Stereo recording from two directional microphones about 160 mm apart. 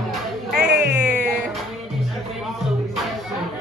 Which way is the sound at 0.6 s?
90° right.